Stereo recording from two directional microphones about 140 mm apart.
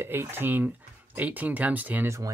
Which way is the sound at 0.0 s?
15° right (ahead or behind).